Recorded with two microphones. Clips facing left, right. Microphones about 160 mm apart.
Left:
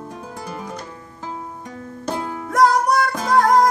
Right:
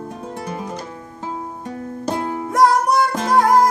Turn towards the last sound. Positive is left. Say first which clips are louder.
# right 1 dB
turn(degrees=0)  # may be behind; listen again after turning